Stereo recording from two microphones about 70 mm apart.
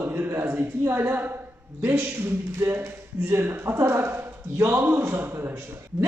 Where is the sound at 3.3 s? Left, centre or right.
Right.